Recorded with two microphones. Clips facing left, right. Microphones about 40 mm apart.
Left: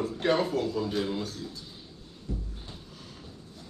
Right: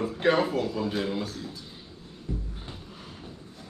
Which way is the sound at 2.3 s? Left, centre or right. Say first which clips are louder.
Right 2 dB; centre.